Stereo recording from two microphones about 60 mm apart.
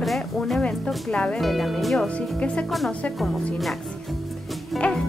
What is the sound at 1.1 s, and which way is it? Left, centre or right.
Speech, centre.